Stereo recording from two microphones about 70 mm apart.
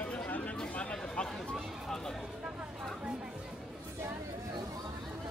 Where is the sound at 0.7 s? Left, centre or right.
Centre.